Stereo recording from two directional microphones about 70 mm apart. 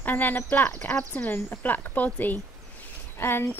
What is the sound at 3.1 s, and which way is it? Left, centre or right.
Speech, left.